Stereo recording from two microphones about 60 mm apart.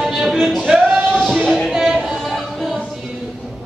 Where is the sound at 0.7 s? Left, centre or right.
Centre.